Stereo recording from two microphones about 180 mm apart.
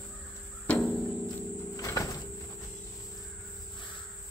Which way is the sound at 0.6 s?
10° left (ahead or behind).